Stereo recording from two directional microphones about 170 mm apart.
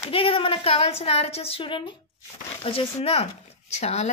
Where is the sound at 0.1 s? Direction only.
30° left (ahead or behind).